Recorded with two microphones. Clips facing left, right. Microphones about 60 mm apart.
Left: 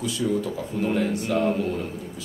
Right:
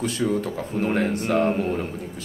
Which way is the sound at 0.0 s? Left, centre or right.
Right.